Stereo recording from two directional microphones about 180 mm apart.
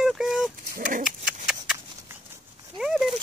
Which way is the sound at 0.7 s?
45° right (ahead or behind).